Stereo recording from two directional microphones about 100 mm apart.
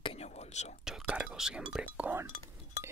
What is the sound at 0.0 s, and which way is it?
Whispering, 80° left.